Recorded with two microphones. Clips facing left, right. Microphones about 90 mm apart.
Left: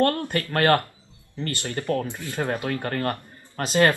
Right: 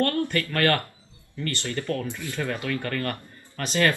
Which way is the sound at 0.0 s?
25° left (ahead or behind).